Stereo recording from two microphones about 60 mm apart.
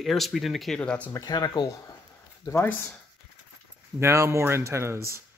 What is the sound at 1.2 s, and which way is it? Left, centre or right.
Speech, left.